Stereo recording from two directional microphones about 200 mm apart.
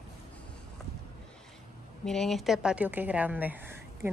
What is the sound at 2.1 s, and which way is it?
A woman's voice, centre (ahead or behind).